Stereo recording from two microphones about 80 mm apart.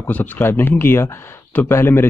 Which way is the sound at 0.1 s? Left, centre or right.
Left.